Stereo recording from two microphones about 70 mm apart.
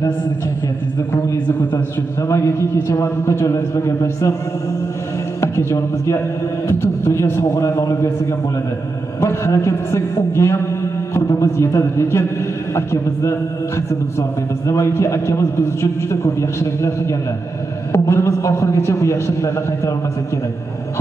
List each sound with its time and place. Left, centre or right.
2.2 s a man's voice: left
5.4 s a man's voice: left